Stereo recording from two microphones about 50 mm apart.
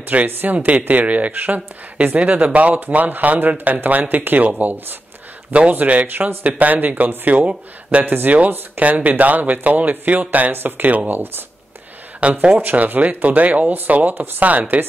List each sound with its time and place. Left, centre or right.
0.1 s speech: right
8.0 s speech: right
12.2 s speech: right
12.6 s speech: right